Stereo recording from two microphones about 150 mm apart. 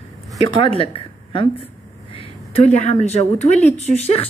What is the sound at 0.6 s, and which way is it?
A woman's voice, 35° left (ahead or behind).